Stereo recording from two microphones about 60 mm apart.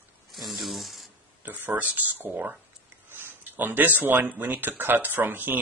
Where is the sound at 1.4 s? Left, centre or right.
Right.